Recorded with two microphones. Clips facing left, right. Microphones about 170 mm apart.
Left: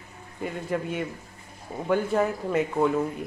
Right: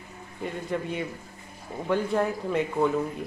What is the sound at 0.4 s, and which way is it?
Speech, 5° left (ahead or behind).